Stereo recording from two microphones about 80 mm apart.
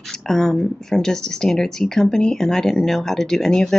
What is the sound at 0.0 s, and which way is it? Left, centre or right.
A woman's voice, centre.